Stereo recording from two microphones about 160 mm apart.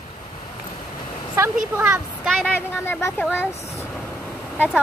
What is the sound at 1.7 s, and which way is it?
Speech, 10° right (ahead or behind).